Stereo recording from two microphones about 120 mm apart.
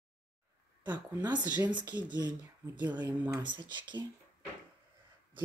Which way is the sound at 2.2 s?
35° right (ahead or behind).